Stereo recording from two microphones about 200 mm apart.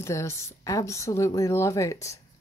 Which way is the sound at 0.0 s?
15° left (ahead or behind).